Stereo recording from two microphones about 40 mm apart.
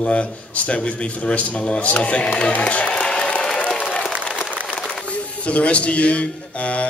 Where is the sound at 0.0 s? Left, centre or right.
Left.